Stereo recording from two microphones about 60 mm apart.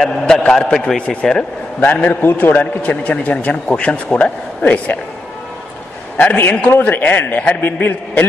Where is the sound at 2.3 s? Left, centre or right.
Left.